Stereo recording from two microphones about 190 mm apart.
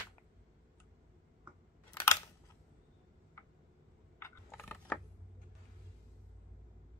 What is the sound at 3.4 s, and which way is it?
Tick, 15° left (ahead or behind).